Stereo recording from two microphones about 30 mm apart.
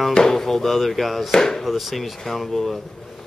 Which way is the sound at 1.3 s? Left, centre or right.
Centre.